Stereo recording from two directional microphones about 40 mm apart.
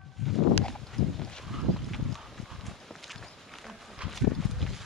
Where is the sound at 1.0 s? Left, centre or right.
Centre.